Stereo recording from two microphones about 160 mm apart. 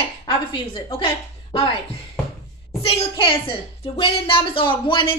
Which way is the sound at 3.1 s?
35° left (ahead or behind).